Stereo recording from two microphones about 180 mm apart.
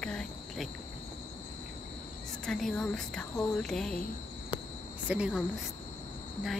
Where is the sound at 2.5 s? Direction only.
Centre (ahead or behind).